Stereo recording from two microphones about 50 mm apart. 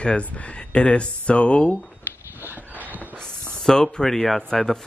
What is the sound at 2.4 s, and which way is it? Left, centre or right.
Dog, right.